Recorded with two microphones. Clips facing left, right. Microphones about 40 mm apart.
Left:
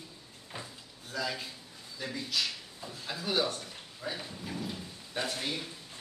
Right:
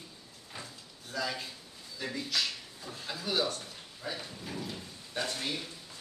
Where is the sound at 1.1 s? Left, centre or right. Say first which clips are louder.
Even; centre.